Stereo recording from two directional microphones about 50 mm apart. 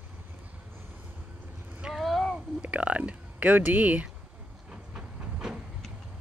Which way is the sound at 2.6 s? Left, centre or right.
Right.